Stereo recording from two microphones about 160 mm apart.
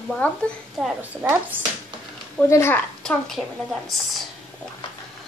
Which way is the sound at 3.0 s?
5° left (ahead or behind).